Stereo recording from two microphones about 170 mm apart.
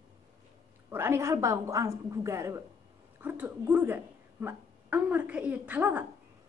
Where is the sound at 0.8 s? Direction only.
15° right (ahead or behind).